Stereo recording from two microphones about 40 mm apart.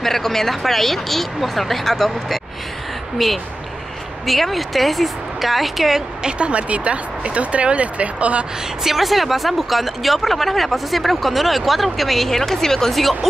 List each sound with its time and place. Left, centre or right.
0.0 s speech: centre
6.2 s speech: right
8.8 s speech: centre